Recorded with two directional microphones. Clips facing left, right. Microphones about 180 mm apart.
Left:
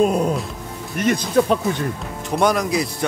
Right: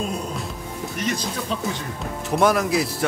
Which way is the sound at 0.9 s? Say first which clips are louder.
Left 11 dB; 55° left (ahead or behind).